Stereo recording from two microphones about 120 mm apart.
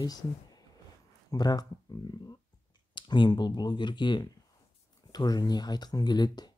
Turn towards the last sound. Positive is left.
turn(degrees=35)  # may be behind; listen again after turning